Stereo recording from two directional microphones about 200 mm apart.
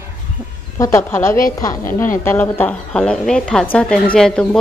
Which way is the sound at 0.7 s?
15° left (ahead or behind).